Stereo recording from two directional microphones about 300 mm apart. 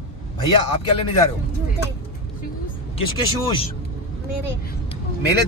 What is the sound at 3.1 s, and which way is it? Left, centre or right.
Speech, centre.